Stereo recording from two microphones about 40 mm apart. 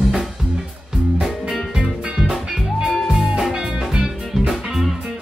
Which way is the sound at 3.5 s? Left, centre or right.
Centre.